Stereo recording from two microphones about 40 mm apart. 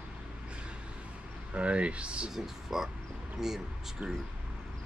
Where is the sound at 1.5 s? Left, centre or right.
Right.